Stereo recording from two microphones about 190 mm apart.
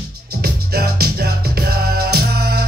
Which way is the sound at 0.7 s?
55° right (ahead or behind).